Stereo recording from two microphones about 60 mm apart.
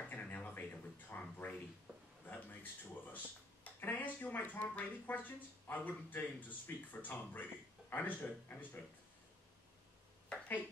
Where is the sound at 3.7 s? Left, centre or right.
Left.